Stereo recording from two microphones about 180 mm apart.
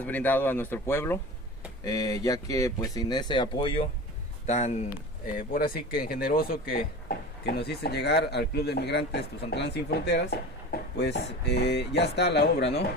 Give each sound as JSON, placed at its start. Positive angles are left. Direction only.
{"t": 0.0, "sound": "speech", "side_deg": 10}
{"t": 4.5, "sound": "speech", "side_deg": 40}
{"t": 5.5, "sound": "speech", "side_deg": 55}